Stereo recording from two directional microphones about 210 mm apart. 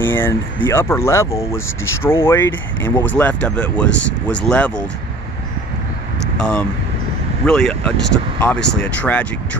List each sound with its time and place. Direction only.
0.0 s speech: 10° left (ahead or behind)
3.9 s speech: 60° left (ahead or behind)
4.4 s speech: 5° left (ahead or behind)
6.1 s a sound: 5° left (ahead or behind)
7.4 s speech: 5° left (ahead or behind)